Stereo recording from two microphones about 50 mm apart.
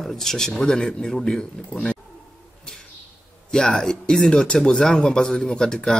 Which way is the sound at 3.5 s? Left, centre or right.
Centre.